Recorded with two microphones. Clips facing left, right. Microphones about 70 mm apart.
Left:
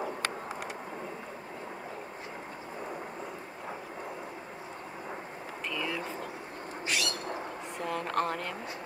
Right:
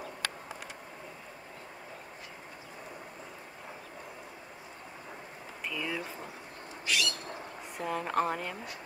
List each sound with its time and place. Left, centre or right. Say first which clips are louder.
5.7 s vehicle: left 1 dB; centre
6.9 s a sound: even; left
7.8 s a woman's voice: right 1 dB; centre